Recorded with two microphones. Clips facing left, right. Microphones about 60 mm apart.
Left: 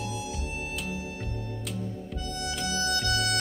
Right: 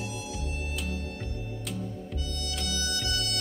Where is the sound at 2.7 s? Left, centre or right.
Left.